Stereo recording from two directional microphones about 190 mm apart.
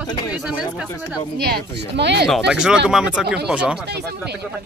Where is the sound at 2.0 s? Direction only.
65° right (ahead or behind).